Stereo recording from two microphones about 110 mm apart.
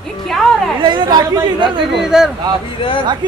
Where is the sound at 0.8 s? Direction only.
40° right (ahead or behind).